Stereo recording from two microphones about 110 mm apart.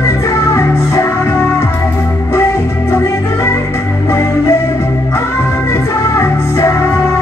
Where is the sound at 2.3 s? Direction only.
25° left (ahead or behind).